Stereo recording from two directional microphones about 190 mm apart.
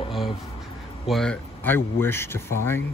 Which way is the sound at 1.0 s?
Centre (ahead or behind).